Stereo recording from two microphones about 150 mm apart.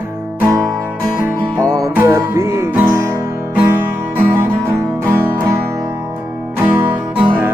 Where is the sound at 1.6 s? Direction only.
20° right (ahead or behind).